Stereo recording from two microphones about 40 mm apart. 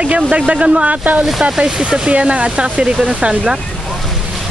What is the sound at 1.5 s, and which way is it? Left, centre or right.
Speech, centre.